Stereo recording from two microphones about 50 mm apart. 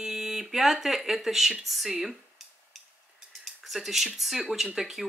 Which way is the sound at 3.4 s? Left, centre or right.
Centre.